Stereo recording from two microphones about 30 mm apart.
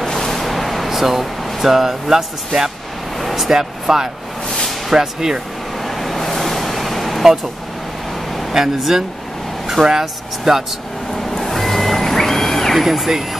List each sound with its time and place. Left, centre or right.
0.0 s a sound: centre
0.8 s speech: centre
3.2 s a sound: centre
3.8 s speech: centre
5.8 s vehicle: centre
8.3 s a sound: centre
8.5 s speech: centre
11.1 s reversing beeps: centre
12.7 s speech: centre